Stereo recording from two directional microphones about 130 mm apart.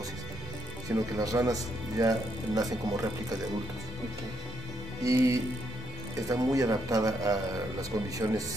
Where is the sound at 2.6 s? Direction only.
30° right (ahead or behind).